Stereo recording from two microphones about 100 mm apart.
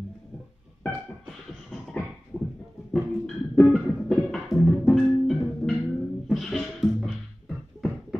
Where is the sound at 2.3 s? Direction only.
5° left (ahead or behind).